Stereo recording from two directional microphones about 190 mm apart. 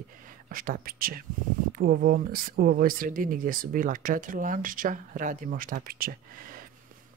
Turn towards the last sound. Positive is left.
turn(degrees=-50)  # may be behind; listen again after turning